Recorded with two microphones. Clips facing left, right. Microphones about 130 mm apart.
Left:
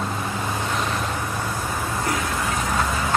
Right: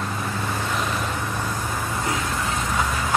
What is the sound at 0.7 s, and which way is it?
Vehicle, centre (ahead or behind).